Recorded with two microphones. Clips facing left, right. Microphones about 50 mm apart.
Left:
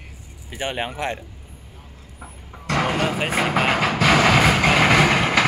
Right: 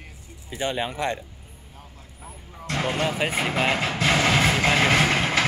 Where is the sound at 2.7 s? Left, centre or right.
Left.